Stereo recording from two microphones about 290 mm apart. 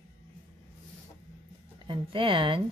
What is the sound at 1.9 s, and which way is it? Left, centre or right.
Speech, centre.